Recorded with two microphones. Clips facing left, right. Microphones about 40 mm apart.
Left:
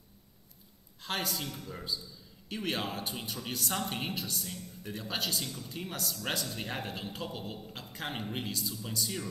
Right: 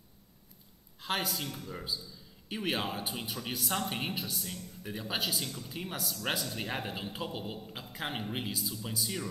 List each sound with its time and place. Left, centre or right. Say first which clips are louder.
1.0 s speech: right 1 dB; centre